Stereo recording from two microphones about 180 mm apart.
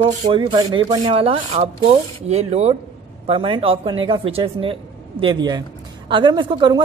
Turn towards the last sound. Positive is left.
turn(degrees=-25)  # may be behind; listen again after turning